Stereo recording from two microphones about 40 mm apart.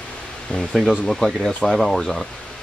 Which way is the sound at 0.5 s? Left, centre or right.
Left.